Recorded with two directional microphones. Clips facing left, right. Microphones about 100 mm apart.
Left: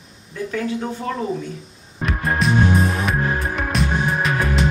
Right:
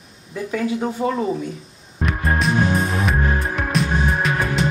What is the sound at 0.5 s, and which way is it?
Speech, 15° right (ahead or behind).